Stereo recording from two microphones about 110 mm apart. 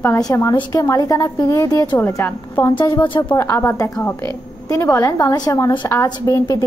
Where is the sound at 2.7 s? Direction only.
45° left (ahead or behind).